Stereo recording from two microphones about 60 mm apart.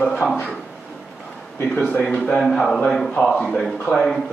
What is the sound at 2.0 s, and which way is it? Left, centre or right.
A man's voice, centre.